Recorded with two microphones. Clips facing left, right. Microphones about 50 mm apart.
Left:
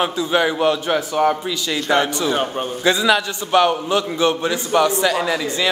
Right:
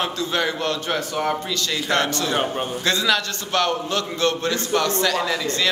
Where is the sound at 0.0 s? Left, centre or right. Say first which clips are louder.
Left 5 dB; centre.